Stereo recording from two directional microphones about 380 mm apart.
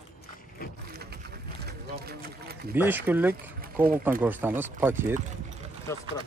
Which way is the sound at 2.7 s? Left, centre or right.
Centre.